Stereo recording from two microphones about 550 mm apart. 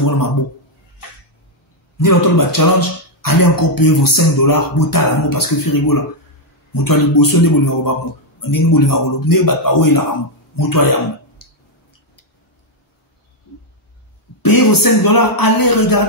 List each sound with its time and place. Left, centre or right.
2.0 s speech: left
14.4 s speech: left